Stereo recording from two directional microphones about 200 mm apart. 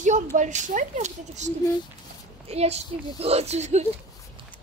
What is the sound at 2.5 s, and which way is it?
Speech, 30° right (ahead or behind).